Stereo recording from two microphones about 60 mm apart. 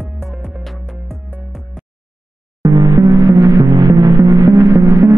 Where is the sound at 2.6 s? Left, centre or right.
Right.